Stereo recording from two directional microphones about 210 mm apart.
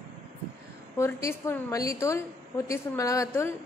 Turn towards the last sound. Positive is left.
turn(degrees=15)  # may be behind; listen again after turning